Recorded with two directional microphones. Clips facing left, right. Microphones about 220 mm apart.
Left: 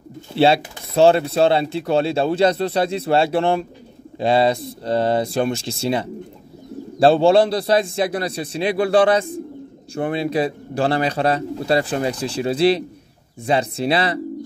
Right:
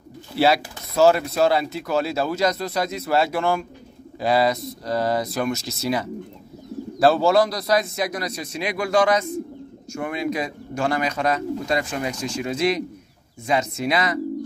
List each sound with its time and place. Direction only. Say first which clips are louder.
0.4 s speech: left 3 dB; 25° left (ahead or behind)